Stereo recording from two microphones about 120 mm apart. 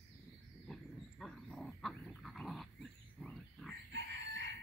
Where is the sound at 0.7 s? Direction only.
5° left (ahead or behind).